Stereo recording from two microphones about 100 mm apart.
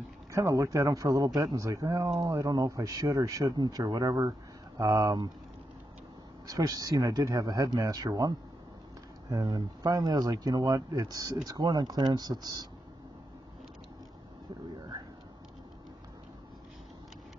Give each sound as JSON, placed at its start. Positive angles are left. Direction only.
{"t": 0.3, "sound": "speech", "side_deg": -30}
{"t": 6.4, "sound": "speech", "side_deg": -35}